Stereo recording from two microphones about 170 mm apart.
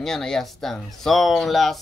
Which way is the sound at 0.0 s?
5° left (ahead or behind).